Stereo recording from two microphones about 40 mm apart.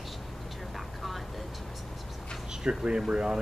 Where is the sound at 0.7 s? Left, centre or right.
Centre.